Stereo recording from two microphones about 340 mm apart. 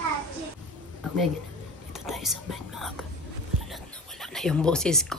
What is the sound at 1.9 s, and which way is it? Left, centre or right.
Speech, centre.